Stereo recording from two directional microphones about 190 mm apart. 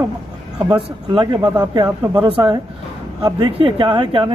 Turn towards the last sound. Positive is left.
turn(degrees=-25)  # may be behind; listen again after turning